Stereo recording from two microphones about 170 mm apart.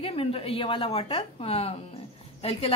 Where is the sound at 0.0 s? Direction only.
35° left (ahead or behind).